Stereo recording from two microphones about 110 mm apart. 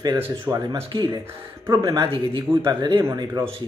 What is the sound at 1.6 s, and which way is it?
Speech, 35° right (ahead or behind).